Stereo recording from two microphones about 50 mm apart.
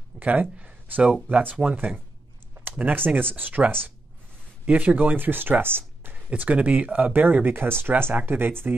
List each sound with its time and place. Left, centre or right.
0.2 s speech: right
6.1 s speech: right